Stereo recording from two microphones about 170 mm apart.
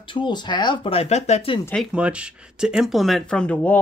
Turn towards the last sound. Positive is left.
turn(degrees=10)  # may be behind; listen again after turning